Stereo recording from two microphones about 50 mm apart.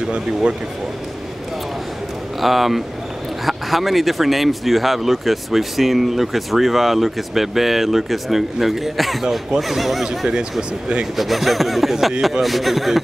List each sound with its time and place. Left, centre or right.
0.0 s speech: centre
2.4 s speech: centre
10.0 s speech: centre
11.1 s speech: centre